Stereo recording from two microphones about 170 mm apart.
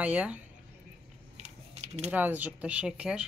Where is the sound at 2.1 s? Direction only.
10° right (ahead or behind).